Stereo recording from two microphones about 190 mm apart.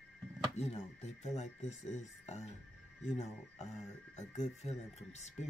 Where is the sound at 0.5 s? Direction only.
35° left (ahead or behind).